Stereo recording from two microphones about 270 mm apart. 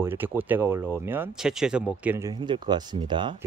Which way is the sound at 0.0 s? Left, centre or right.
Centre.